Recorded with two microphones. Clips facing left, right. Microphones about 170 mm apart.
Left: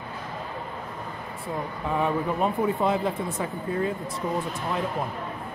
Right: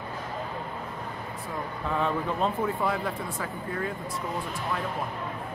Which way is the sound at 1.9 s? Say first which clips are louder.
Left 3 dB; 15° left (ahead or behind).